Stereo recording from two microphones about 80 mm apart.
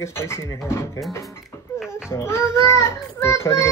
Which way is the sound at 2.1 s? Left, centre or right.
Left.